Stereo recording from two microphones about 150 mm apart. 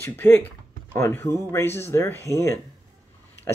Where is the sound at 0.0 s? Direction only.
15° left (ahead or behind).